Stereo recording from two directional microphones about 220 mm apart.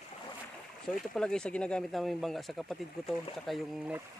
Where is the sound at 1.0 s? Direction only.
Centre (ahead or behind).